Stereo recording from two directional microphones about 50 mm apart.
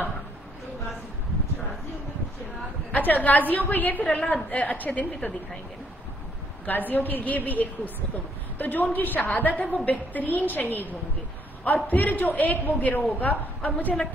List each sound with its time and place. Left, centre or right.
2.9 s a man's voice: left
6.6 s a man's voice: left